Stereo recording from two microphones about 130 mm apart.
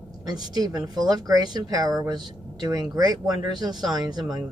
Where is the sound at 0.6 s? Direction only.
30° right (ahead or behind).